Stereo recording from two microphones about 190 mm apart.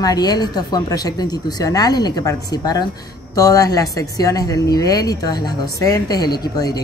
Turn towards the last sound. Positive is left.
turn(degrees=20)  # may be behind; listen again after turning